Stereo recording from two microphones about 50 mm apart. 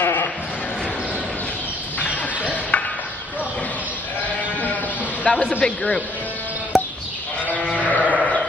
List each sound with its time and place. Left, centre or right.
0.0 s bleat: left
2.4 s a sound: left
5.2 s a man's voice: left
6.7 s sheep: centre
7.4 s sheep: left